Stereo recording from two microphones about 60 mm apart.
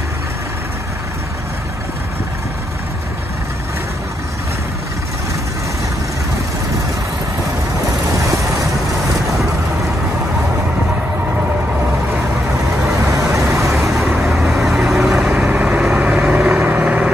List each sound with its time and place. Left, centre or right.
13.5 s vehicle: right
13.7 s vehicle: centre
15.5 s vehicle: right